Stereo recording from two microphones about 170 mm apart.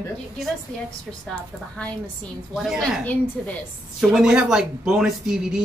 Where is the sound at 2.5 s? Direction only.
Centre (ahead or behind).